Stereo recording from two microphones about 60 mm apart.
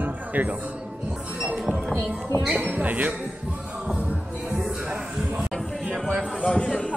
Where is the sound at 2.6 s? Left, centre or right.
Right.